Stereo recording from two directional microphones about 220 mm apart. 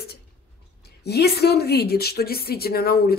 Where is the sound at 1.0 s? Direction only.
45° left (ahead or behind).